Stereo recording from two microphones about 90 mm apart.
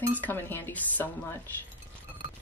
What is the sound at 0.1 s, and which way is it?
Speech, 20° left (ahead or behind).